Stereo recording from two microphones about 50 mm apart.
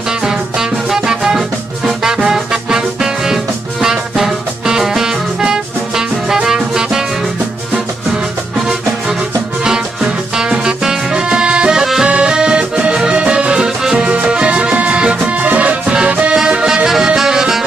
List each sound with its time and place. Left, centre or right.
0.2 s music: centre
9.7 s music: centre
11.8 s music: centre
12.1 s music: centre
16.3 s music: centre